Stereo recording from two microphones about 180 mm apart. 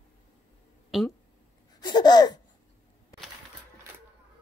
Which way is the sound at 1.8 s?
25° left (ahead or behind).